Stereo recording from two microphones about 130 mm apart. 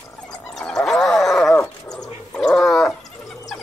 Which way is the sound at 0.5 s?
5° left (ahead or behind).